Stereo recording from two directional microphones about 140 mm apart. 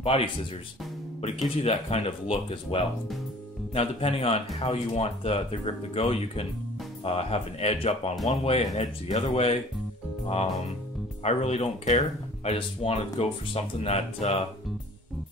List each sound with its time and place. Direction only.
0.0 s speech: 40° left (ahead or behind)
1.6 s speech: 50° left (ahead or behind)